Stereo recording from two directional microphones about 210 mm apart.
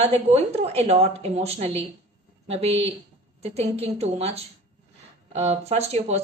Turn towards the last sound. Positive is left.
turn(degrees=-30)  # may be behind; listen again after turning